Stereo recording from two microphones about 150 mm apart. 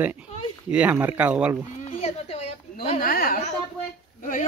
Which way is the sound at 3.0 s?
70° left (ahead or behind).